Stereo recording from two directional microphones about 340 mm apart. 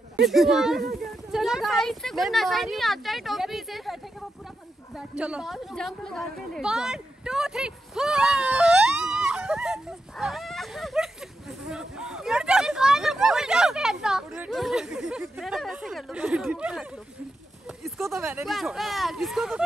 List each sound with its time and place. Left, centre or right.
0.1 s a woman's voice: centre